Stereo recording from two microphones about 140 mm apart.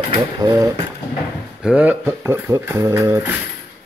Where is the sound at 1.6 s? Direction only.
10° right (ahead or behind).